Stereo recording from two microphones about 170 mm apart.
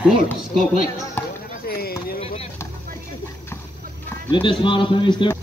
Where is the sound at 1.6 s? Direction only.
65° left (ahead or behind).